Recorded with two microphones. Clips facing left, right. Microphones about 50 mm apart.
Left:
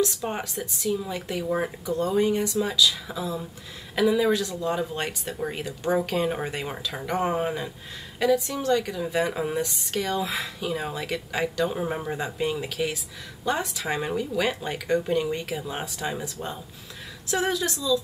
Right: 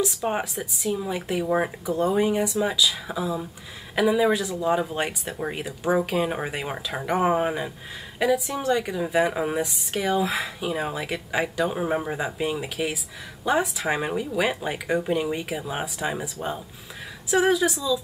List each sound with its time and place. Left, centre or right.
0.0 s speech: centre